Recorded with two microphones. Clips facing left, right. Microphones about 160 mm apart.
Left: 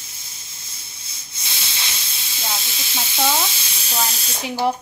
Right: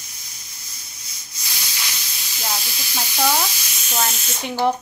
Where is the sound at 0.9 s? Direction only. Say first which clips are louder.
Left 1 dB; 25° left (ahead or behind).